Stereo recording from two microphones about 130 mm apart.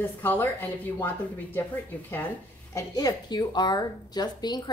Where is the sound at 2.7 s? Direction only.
30° left (ahead or behind).